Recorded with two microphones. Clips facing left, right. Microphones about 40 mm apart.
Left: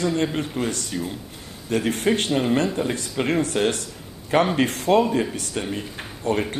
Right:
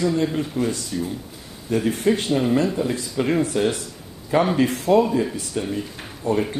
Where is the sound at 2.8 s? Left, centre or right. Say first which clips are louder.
Right 1 dB; left.